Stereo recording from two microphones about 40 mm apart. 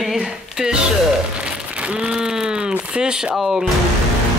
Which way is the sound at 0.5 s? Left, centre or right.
Centre.